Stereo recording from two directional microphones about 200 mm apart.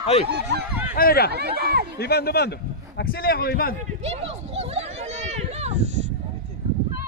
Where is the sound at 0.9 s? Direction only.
50° left (ahead or behind).